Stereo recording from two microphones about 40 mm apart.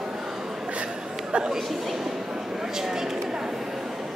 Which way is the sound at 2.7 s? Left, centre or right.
Centre.